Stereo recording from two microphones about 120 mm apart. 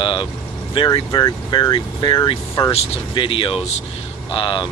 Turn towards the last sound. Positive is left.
turn(degrees=45)  # may be behind; listen again after turning